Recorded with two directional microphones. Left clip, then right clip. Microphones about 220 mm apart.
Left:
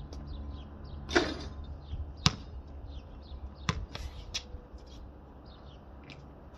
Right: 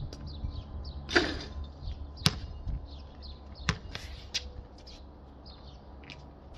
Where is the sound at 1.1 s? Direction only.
20° left (ahead or behind).